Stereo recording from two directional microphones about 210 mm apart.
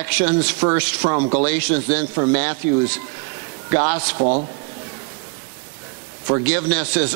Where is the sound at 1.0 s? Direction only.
30° right (ahead or behind).